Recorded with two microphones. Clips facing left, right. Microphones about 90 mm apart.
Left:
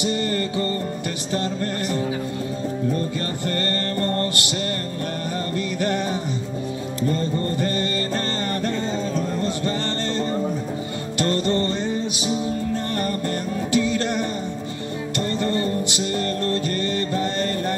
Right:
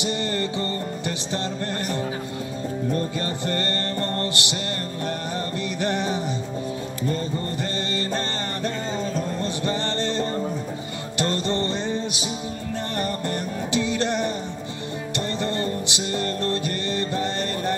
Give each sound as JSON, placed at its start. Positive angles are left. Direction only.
{"t": 0.0, "sound": "music", "side_deg": -25}
{"t": 3.4, "sound": "music", "side_deg": -20}
{"t": 5.8, "sound": "music", "side_deg": -20}
{"t": 9.7, "sound": "music", "side_deg": -20}
{"t": 13.7, "sound": "music", "side_deg": -20}